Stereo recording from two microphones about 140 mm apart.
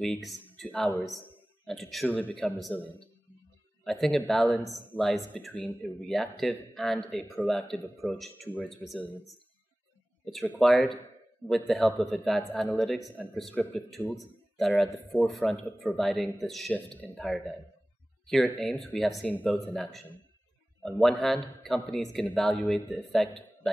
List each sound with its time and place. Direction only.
0.0 s a man's voice: centre (ahead or behind)
1.2 s a sound: 5° left (ahead or behind)
2.0 s a man's voice: 10° left (ahead or behind)
10.4 s a man's voice: 10° left (ahead or behind)